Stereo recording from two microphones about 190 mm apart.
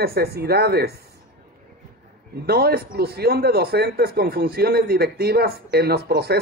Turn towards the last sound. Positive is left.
turn(degrees=-60)  # may be behind; listen again after turning